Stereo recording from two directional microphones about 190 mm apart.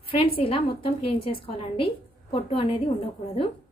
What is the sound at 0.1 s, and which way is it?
A woman's voice, 30° left (ahead or behind).